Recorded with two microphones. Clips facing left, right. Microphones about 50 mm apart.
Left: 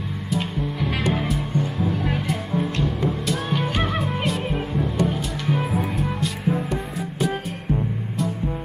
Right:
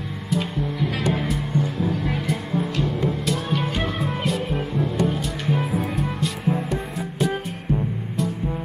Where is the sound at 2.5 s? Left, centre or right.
Centre.